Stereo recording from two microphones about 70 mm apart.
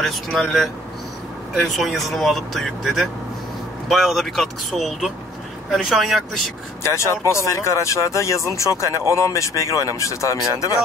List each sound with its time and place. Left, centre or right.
0.0 s speech: centre
6.8 s speech: left